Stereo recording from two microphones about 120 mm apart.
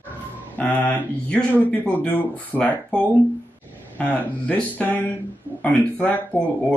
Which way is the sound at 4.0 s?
10° left (ahead or behind).